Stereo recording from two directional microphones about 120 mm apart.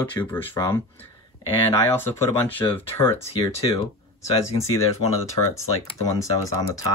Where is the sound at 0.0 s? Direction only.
15° left (ahead or behind).